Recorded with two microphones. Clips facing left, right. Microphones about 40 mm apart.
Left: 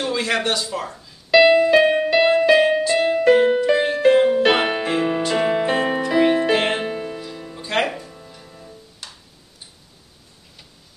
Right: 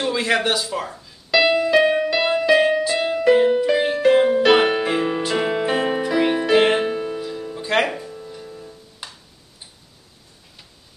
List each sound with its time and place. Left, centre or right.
0.0 s speech: centre
1.3 s music: centre
9.0 s music: centre